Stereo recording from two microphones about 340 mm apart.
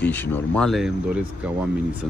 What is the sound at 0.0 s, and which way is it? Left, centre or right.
Speech, centre.